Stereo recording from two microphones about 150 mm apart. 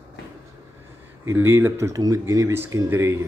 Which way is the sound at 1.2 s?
15° right (ahead or behind).